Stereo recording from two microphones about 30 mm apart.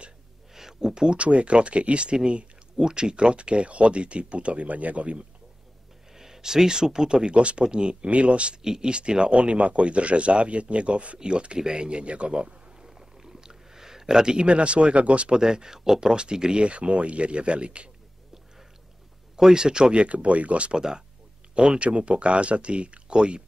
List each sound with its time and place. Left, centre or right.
0.6 s a sound: centre
1.1 s speech: right
6.1 s speech: centre; by 8.5 s right
8.6 s speech: right
8.9 s speech: right
9.4 s a man's voice: right
11.1 s speech: right
12.8 s a sound: centre; by 15.3 s right
15.3 s speech: right
16.6 s speech: right
19.3 s speech: right
20.1 s a man's voice: right
20.7 s speech: right
21.7 s speech: right